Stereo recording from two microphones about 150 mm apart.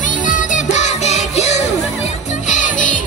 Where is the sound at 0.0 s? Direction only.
60° left (ahead or behind).